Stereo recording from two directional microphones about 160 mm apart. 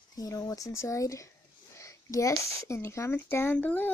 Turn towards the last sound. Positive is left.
turn(degrees=10)  # may be behind; listen again after turning